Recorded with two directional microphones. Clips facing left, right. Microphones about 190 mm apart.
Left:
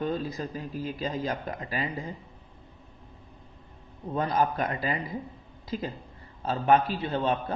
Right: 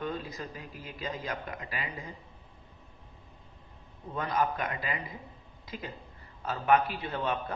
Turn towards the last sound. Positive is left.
turn(degrees=30)  # may be behind; listen again after turning